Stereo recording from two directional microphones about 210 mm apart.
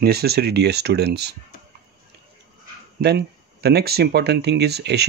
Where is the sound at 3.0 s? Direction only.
50° right (ahead or behind).